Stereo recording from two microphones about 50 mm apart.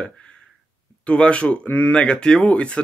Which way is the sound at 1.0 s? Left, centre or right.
Left.